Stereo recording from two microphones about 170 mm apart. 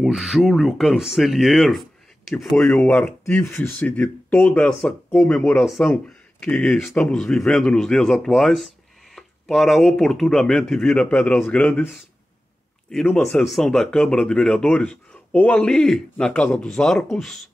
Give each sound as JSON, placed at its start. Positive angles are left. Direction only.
{"t": 0.0, "sound": "speech", "side_deg": 0}
{"t": 13.1, "sound": "speech", "side_deg": 5}